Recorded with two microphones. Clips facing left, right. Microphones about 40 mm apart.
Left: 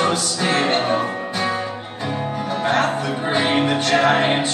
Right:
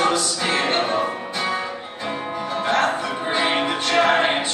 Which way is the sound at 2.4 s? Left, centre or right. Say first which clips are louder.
Left 1 dB; centre.